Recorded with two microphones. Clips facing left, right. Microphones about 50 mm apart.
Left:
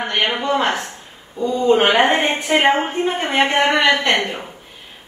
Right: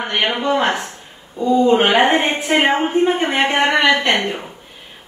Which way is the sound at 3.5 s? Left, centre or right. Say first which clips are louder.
Right 2 dB; centre.